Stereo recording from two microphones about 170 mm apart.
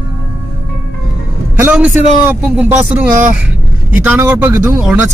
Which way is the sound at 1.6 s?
5° right (ahead or behind).